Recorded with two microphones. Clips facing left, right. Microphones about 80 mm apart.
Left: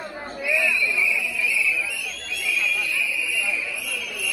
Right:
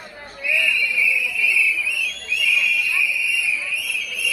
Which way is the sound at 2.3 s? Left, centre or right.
Left.